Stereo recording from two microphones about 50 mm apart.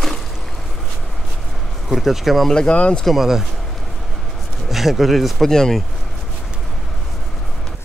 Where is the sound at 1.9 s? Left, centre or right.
Centre.